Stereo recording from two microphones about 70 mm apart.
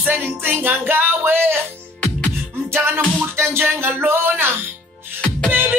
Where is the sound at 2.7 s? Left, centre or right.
Right.